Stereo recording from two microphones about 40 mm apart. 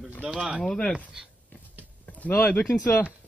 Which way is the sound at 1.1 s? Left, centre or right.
Centre.